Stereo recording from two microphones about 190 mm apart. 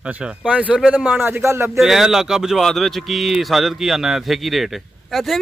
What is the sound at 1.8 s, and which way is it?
A man's voice, centre (ahead or behind).